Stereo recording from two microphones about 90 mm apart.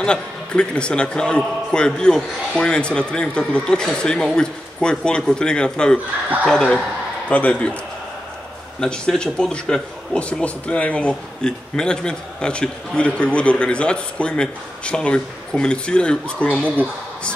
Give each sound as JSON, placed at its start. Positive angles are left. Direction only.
{"t": 0.0, "sound": "a man's voice", "side_deg": 10}
{"t": 8.8, "sound": "a man's voice", "side_deg": 10}